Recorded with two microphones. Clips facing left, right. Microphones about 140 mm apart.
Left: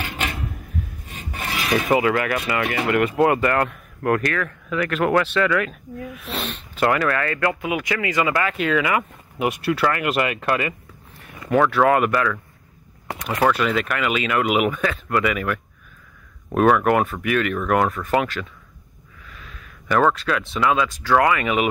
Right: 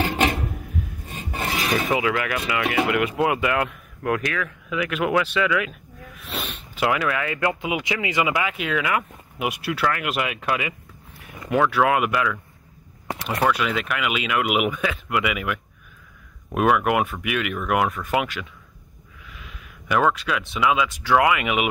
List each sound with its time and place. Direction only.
0.0 s a sound: 30° right (ahead or behind)
1.9 s speech: centre (ahead or behind)
6.1 s snort: centre (ahead or behind)
7.3 s speech: 20° right (ahead or behind)
13.4 s speech: centre (ahead or behind)
19.2 s a sound: 10° right (ahead or behind)
21.1 s speech: 10° right (ahead or behind)